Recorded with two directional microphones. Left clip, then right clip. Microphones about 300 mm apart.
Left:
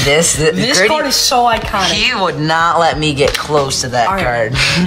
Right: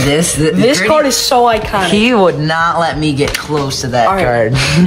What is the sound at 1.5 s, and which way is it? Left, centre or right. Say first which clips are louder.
Speech: right 1 dB; centre.